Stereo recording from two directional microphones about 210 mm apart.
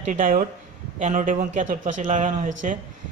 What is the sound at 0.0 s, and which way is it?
Speech, 35° right (ahead or behind).